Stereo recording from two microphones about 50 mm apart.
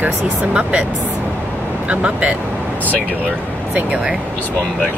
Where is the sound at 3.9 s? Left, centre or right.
Centre.